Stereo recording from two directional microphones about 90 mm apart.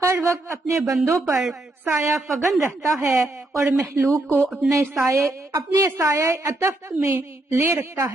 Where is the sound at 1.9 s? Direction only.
25° right (ahead or behind).